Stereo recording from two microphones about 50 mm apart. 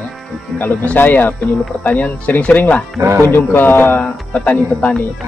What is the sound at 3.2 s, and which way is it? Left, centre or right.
Speech, left.